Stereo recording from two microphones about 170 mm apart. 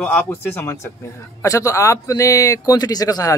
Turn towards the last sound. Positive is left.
turn(degrees=20)  # may be behind; listen again after turning